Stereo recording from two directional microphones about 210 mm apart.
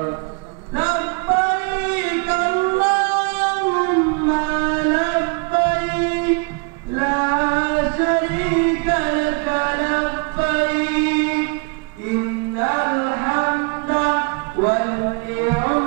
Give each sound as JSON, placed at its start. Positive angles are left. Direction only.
{"t": 0.7, "sound": "singing", "side_deg": -15}
{"t": 12.5, "sound": "music", "side_deg": -20}